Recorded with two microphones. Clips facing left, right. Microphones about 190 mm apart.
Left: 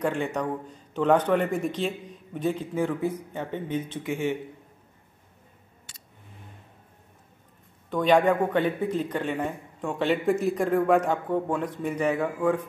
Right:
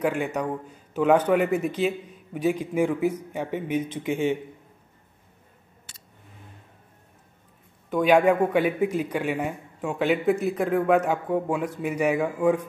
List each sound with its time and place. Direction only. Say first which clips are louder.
0.0 s speech: right 1 dB; 10° right (ahead or behind)
7.9 s speech: right 2 dB; 10° right (ahead or behind)